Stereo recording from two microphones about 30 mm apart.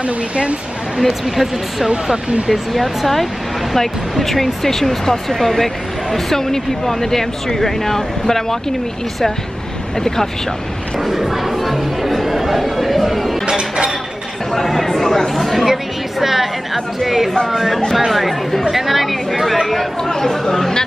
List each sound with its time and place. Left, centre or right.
0.0 s speech: right
1.0 s speech: centre
11.1 s chatter: centre
13.5 s chink: right
14.5 s chatter: centre
15.6 s music: centre
17.5 s speech: centre
20.1 s speech: left